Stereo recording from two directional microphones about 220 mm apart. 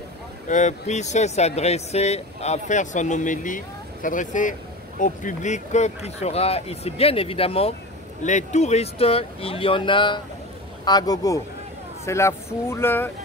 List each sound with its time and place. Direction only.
0.5 s speech: 35° left (ahead or behind); by 13.1 s 10° left (ahead or behind)